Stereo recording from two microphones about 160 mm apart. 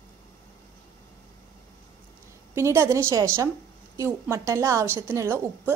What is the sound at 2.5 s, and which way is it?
A woman's voice, 15° right (ahead or behind).